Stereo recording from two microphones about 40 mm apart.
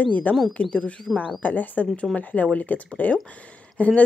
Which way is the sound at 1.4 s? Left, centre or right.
Left.